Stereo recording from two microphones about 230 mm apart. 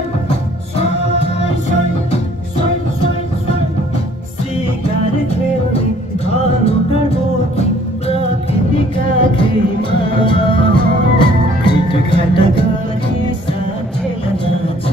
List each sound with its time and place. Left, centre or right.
0.7 s music: left
8.9 s music: left